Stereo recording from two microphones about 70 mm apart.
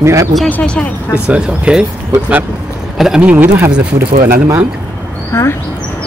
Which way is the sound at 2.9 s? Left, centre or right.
Centre.